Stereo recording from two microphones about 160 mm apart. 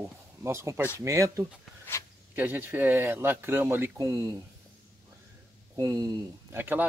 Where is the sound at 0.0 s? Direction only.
15° right (ahead or behind).